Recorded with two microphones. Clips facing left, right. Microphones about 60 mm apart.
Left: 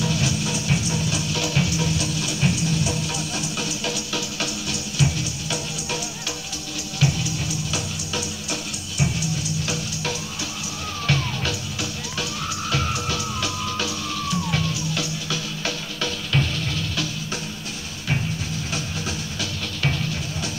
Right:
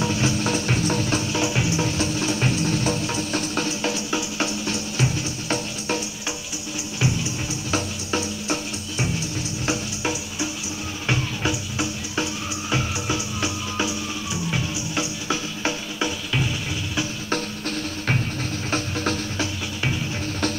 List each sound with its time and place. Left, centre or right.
0.0 s music: right
1.3 s music: right
18.7 s music: right